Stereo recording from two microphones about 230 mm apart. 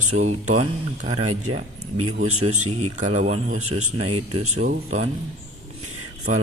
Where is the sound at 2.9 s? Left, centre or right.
Right.